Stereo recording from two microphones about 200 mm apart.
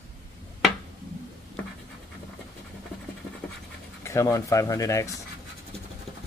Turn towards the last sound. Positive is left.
turn(degrees=15)  # may be behind; listen again after turning